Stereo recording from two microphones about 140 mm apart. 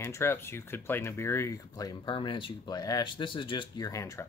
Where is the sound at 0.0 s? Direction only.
15° left (ahead or behind).